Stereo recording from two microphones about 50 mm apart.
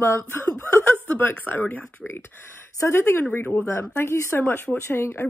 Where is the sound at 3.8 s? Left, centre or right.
Left.